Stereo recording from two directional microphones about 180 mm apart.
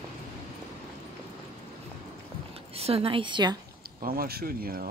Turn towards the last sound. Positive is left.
turn(degrees=-55)  # may be behind; listen again after turning